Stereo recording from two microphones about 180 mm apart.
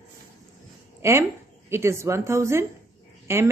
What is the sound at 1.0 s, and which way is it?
A woman's voice, 15° right (ahead or behind).